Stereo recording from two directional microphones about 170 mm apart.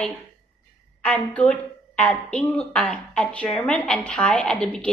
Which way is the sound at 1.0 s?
10° left (ahead or behind).